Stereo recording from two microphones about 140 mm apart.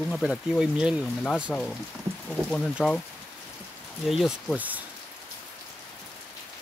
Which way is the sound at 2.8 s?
5° right (ahead or behind).